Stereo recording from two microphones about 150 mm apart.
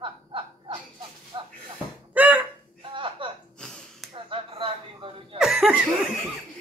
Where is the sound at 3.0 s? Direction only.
35° right (ahead or behind).